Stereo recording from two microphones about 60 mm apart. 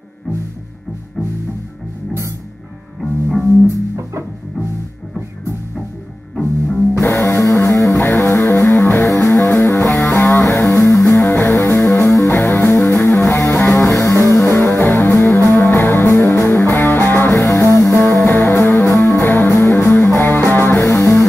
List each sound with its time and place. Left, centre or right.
3.0 s music: centre
7.0 s music: left
7.7 s music: left
8.0 s music: left
12.3 s music: left
14.5 s music: left
17.4 s music: left
18.2 s music: left
20.8 s music: left